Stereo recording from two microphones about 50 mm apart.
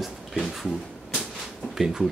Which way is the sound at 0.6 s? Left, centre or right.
Centre.